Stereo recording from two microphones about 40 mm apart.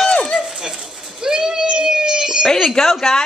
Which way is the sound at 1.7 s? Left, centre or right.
Right.